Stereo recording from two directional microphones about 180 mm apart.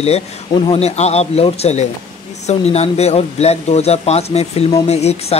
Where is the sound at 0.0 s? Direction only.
35° left (ahead or behind).